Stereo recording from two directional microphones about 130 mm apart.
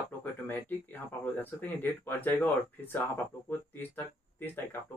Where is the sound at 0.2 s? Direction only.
15° left (ahead or behind).